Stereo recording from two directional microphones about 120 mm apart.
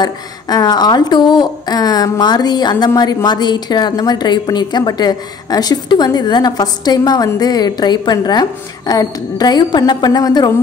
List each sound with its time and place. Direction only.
0.0 s a woman's voice: 35° left (ahead or behind)